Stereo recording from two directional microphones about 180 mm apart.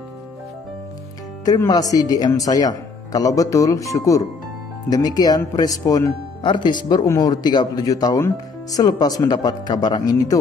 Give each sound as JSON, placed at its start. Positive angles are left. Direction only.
{"t": 1.4, "sound": "speech", "side_deg": 20}